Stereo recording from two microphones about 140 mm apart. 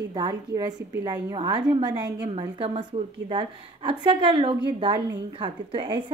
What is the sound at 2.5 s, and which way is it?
A woman's voice, 40° right (ahead or behind).